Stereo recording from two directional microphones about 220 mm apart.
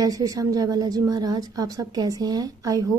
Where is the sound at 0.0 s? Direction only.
15° right (ahead or behind).